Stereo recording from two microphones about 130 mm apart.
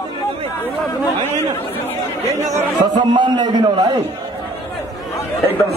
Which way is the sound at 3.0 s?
35° right (ahead or behind).